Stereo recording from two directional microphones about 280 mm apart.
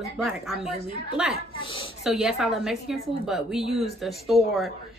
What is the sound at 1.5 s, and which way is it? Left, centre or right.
Speech, centre.